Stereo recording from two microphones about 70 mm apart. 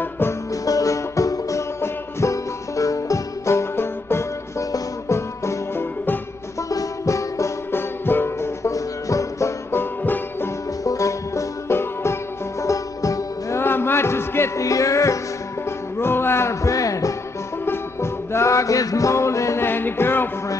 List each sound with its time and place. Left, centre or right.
0.7 s music: left
6.7 s music: left
7.7 s music: left
8.6 s music: left
9.7 s banjo: left
10.8 s music: left
12.6 s music: left
13.6 s music: left
14.6 s music: left
16.0 s music: left
17.6 s music: left